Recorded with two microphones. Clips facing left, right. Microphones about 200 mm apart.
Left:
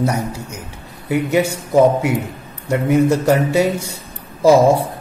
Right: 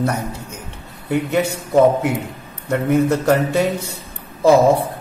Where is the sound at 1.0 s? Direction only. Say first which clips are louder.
Left 2 dB; 10° left (ahead or behind).